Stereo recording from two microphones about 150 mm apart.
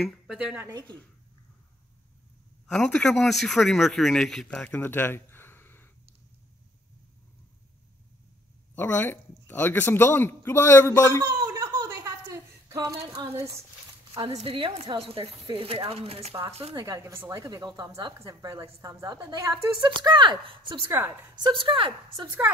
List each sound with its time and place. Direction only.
0.0 s speech: 5° right (ahead or behind)
0.6 s a woman's voice: 25° right (ahead or behind)
2.6 s speech: 5° left (ahead or behind)
8.7 s speech: 15° left (ahead or behind)
11.5 s a sound: 20° right (ahead or behind)
14.3 s a woman's voice: 40° right (ahead or behind)
16.7 s a woman's voice: 20° right (ahead or behind)
20.8 s a woman's voice: 15° right (ahead or behind)
21.4 s speech: 30° right (ahead or behind)